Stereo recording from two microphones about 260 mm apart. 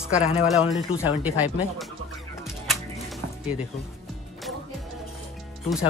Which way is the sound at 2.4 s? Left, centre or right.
Centre.